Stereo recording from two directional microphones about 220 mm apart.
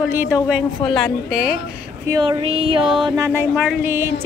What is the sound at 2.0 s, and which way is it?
Speech, 20° right (ahead or behind).